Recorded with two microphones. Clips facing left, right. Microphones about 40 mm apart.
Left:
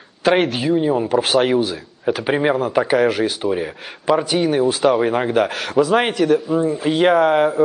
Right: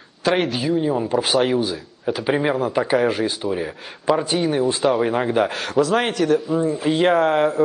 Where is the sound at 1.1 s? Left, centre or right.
Left.